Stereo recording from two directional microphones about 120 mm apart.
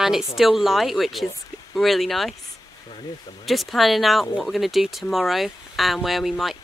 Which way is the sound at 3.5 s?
Centre (ahead or behind).